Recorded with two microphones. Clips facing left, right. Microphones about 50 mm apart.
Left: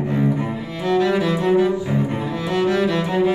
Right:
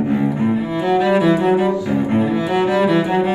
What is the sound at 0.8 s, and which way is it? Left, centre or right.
Music, centre.